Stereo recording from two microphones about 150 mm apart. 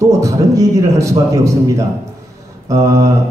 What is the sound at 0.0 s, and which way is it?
Speech, 20° right (ahead or behind).